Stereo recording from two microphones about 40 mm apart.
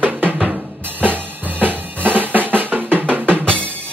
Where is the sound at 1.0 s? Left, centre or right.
Right.